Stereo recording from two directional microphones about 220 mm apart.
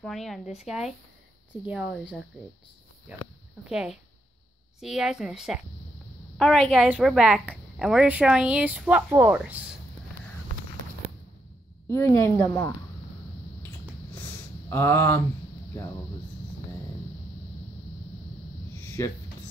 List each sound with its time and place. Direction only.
0.0 s a woman's voice: centre (ahead or behind)
1.5 s a woman's voice: 20° left (ahead or behind)
3.6 s a woman's voice: 5° right (ahead or behind)
11.9 s a woman's voice: 15° left (ahead or behind)
14.1 s a sound: 10° left (ahead or behind)
18.9 s a sound: 10° left (ahead or behind)